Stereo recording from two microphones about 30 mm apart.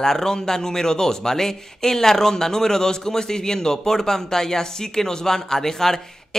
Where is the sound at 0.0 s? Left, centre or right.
Centre.